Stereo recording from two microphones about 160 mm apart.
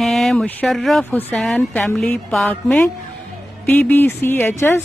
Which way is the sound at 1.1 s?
10° left (ahead or behind).